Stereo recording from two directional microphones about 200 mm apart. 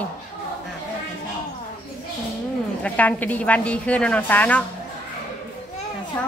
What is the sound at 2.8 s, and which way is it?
A woman's voice, 5° left (ahead or behind).